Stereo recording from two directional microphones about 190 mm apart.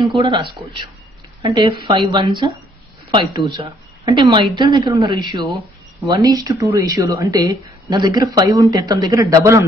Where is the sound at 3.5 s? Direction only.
20° right (ahead or behind).